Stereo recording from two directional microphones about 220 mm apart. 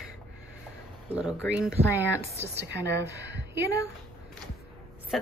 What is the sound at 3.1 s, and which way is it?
Speech, 50° right (ahead or behind).